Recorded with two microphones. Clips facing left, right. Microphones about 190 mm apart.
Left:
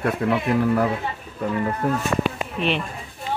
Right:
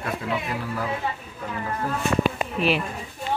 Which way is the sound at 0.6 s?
60° left (ahead or behind).